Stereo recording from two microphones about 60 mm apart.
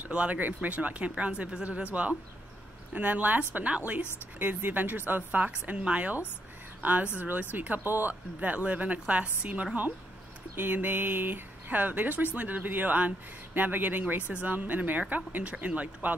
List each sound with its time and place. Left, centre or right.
0.0 s a woman's voice: right